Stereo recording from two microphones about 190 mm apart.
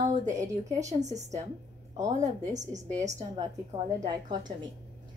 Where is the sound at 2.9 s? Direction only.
15° right (ahead or behind).